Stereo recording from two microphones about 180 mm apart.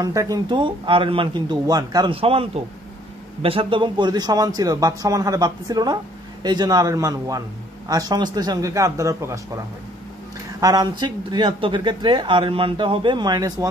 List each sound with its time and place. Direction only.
0.0 s speech: 20° right (ahead or behind)
10.6 s speech: 20° right (ahead or behind)